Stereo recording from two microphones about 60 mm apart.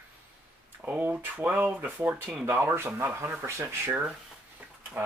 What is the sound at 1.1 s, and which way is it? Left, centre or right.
Speech, right.